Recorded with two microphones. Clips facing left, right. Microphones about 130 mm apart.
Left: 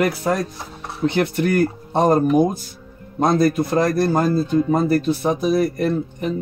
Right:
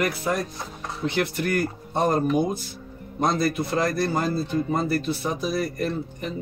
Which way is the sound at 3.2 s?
50° left (ahead or behind).